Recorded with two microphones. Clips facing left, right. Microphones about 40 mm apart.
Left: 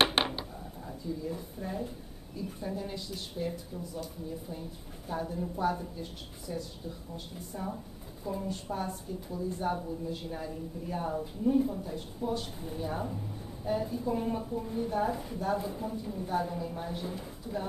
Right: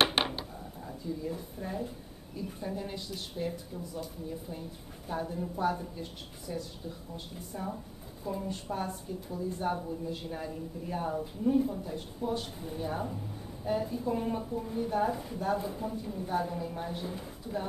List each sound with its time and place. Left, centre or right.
0.0 s a sound: centre
1.3 s a woman's voice: centre
6.5 s speech: centre
7.5 s a woman's voice: centre